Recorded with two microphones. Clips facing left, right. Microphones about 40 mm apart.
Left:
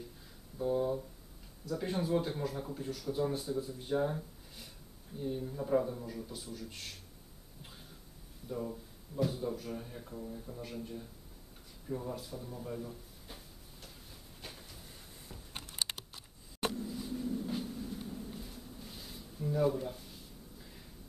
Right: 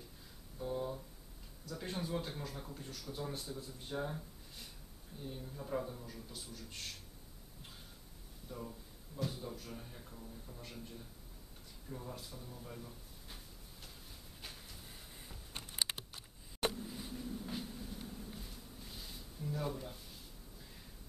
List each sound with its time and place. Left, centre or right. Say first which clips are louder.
0.6 s a sound: left 8 dB; centre
1.7 s speech: left 8 dB; centre
8.5 s speech: left 8 dB; centre
10.1 s a man's voice: left 11 dB; centre
10.6 s speech: left 7 dB; centre
12.6 s drawer open or close: left 8 dB; centre
14.4 s a sound: left 2 dB; centre
15.6 s typing: even; centre
16.6 s a sound: left 2 dB; centre